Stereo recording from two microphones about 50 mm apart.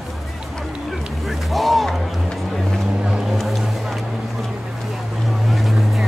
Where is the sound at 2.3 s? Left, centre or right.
Centre.